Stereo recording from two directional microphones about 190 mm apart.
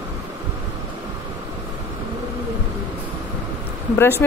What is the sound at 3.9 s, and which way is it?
Speech, 10° left (ahead or behind).